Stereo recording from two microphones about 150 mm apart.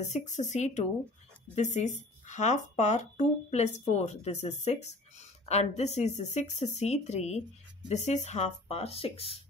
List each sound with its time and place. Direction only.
0.0 s speech: 50° left (ahead or behind)